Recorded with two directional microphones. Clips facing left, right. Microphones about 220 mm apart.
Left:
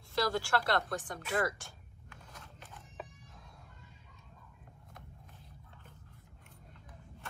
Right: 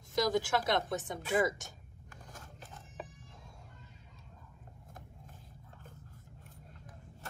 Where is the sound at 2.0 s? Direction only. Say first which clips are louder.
Right 2 dB; 45° right (ahead or behind).